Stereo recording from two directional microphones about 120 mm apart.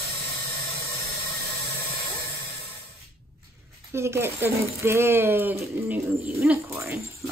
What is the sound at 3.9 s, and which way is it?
Speech, 20° right (ahead or behind).